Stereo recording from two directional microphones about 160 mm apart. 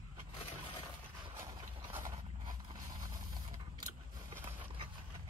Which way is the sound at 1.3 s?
15° right (ahead or behind).